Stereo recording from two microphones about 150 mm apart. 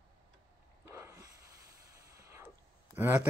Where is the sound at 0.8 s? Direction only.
15° right (ahead or behind).